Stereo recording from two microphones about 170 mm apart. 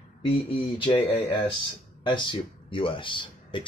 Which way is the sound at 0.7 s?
30° left (ahead or behind).